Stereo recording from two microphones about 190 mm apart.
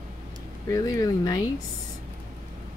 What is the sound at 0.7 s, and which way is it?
Speech, 20° left (ahead or behind).